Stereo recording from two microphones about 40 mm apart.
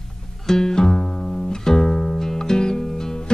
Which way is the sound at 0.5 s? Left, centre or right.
Centre.